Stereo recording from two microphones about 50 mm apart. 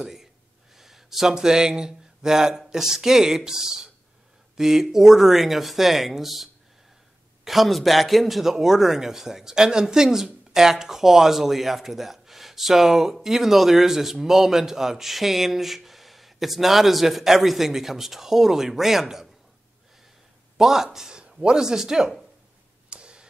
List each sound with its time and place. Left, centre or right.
0.0 s a man's voice: centre
20.5 s speech: centre
22.8 s tick: centre